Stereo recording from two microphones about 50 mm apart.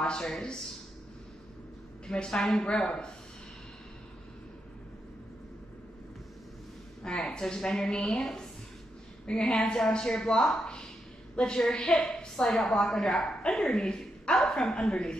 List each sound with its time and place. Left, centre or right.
0.0 s speech: centre
2.0 s speech: centre
7.0 s speech: centre
9.2 s speech: centre
11.3 s speech: centre